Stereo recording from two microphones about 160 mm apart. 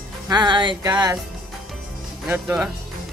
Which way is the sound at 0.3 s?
30° right (ahead or behind).